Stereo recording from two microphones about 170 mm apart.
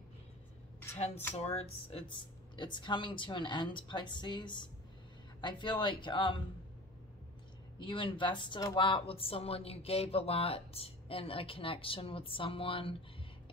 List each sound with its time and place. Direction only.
0.9 s a woman's voice: 40° left (ahead or behind)
7.8 s a woman's voice: 30° left (ahead or behind)